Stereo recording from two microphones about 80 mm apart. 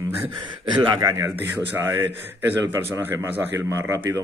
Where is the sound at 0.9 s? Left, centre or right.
Right.